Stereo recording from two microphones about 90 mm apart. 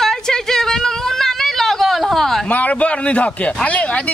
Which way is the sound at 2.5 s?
15° left (ahead or behind).